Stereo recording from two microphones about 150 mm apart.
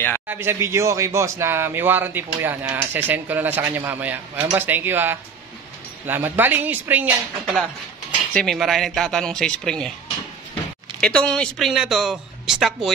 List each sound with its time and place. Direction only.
0.3 s speech: 15° right (ahead or behind)
8.3 s speech: 5° left (ahead or behind)
11.0 s speech: 5° left (ahead or behind)